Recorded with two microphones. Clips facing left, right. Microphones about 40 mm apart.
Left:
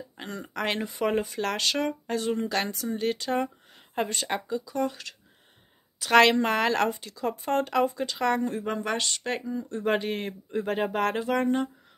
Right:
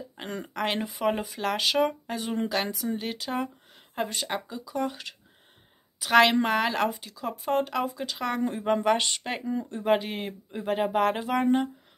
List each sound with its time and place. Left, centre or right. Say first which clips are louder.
0.5 s a woman's voice: even; centre
8.4 s speech: right 3 dB; centre
9.8 s speech: right 1 dB; centre